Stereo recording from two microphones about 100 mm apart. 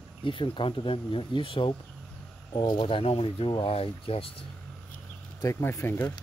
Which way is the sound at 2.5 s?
50° left (ahead or behind).